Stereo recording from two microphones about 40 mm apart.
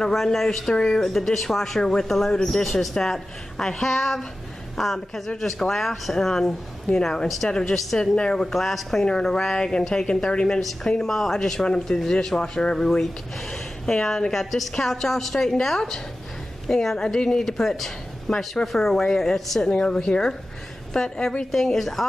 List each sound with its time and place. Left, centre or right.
0.1 s a man's voice: centre; by 8.1 s left
8.4 s a man's voice: centre
21.5 s a man's voice: centre